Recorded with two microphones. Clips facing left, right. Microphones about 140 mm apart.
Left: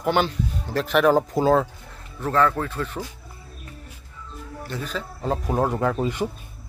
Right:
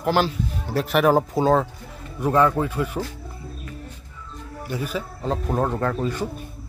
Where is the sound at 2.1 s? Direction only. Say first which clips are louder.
Right 2 dB; 15° right (ahead or behind).